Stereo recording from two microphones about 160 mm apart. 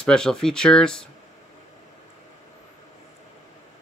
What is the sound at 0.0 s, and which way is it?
Speech, 5° left (ahead or behind).